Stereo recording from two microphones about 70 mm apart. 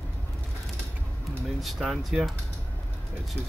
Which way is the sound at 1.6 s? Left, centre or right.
Centre.